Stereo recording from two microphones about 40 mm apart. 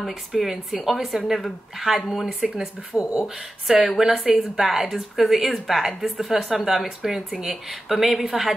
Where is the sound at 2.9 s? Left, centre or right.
Right.